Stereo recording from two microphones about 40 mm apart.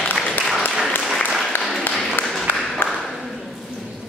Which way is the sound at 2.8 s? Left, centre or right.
Left.